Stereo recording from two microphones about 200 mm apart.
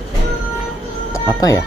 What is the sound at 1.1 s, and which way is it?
Speech, 15° left (ahead or behind).